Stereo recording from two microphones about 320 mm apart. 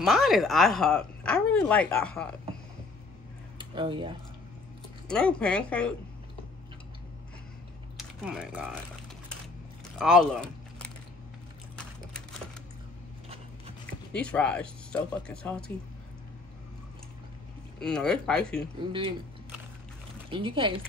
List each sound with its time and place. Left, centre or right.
0.0 s speech: centre
3.5 s speech: centre
5.0 s speech: centre
8.0 s speech: centre
9.9 s a sound: centre
14.1 s speech: centre
17.7 s speech: centre
18.9 s speech: centre
20.2 s speech: centre